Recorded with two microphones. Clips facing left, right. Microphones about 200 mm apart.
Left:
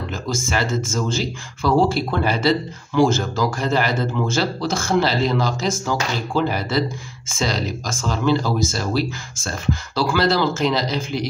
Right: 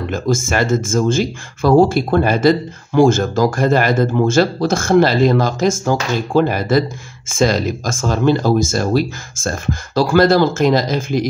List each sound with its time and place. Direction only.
0.1 s speech: 50° right (ahead or behind)